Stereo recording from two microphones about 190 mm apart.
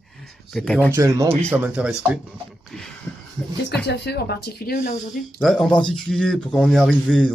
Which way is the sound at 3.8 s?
60° left (ahead or behind).